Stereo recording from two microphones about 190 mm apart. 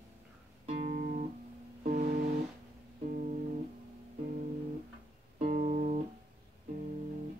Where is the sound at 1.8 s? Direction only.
40° right (ahead or behind).